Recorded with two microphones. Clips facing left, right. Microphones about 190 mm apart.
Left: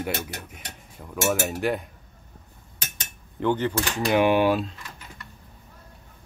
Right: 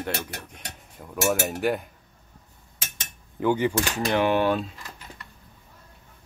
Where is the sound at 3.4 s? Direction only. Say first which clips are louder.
Right 1 dB; 10° right (ahead or behind).